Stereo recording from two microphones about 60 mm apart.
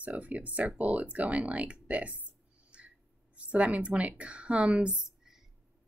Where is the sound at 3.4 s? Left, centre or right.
Right.